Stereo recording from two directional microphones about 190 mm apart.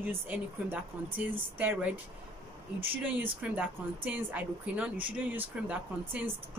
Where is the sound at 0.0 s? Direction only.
10° right (ahead or behind).